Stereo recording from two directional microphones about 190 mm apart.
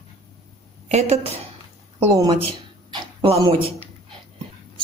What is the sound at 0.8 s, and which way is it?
A woman's voice, 35° right (ahead or behind).